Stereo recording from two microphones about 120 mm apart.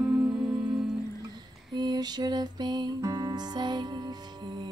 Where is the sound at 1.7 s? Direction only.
35° right (ahead or behind).